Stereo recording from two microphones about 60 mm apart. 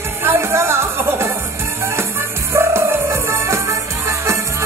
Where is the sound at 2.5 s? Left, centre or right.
Right.